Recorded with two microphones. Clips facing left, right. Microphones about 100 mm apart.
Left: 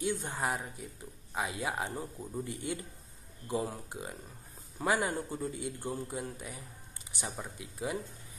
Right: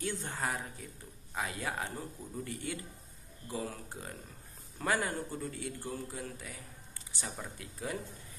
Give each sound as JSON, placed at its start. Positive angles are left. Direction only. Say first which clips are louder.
{"t": 0.0, "sound": "a man's voice", "louder": "left 3 dB", "side_deg": 15}